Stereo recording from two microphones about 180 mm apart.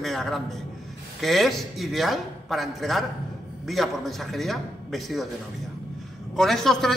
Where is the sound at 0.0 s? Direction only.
Centre (ahead or behind).